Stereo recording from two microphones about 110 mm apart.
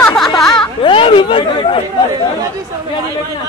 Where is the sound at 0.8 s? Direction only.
55° left (ahead or behind).